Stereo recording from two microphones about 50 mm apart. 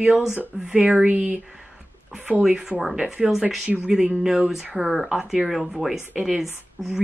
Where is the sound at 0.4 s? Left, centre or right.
Right.